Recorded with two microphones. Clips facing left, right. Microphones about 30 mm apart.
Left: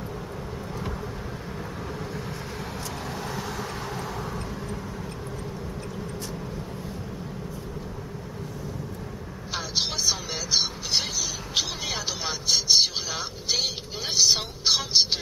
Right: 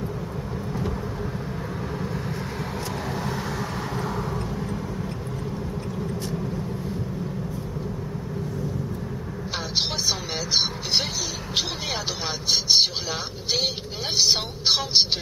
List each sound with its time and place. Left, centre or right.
9.8 s vehicle: centre
12.4 s vehicle: centre
14.1 s speech: right